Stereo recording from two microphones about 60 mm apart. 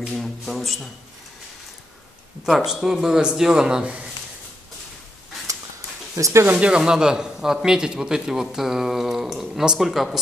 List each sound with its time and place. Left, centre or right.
0.0 s speech: centre
2.4 s a man's voice: centre
6.1 s speech: right
6.4 s a man's voice: right; by 10.1 s centre